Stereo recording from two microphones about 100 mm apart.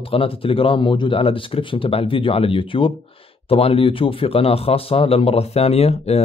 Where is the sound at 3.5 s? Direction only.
75° left (ahead or behind).